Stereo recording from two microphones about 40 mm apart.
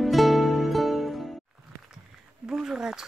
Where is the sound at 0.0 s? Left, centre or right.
Centre.